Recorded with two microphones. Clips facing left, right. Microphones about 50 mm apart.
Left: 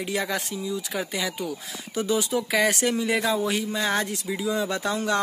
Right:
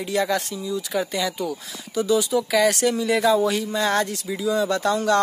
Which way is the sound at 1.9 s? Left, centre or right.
Left.